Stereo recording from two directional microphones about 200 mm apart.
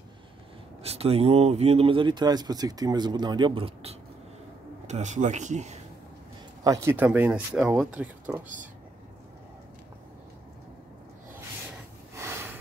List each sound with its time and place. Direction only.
0.8 s speech: 30° right (ahead or behind)
6.6 s speech: 15° right (ahead or behind)
12.2 s a sound: 15° right (ahead or behind)